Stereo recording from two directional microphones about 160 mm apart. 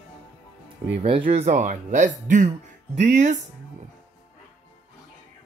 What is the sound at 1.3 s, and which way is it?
Speech, 45° right (ahead or behind).